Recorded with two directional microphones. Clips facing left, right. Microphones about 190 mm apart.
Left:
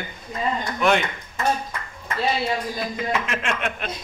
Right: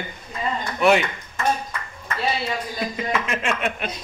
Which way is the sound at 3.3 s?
Centre (ahead or behind).